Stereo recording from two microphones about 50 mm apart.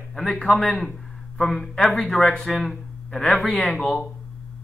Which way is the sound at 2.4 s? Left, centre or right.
Centre.